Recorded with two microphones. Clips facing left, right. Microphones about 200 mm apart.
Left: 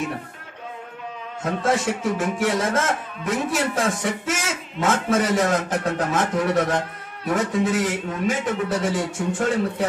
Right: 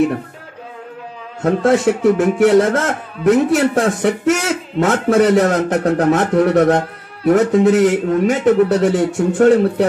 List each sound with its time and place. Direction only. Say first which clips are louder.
1.4 s speech: right 9 dB; 60° right (ahead or behind)